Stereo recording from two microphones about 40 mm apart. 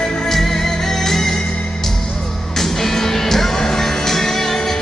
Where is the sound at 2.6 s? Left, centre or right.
Centre.